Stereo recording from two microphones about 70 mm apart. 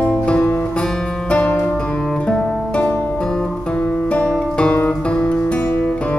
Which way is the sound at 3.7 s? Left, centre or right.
Left.